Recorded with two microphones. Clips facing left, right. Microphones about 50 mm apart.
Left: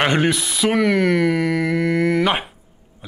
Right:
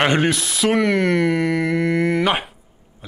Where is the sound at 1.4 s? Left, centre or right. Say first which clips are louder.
Even; right.